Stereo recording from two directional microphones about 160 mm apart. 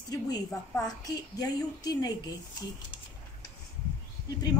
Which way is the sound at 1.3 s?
25° left (ahead or behind).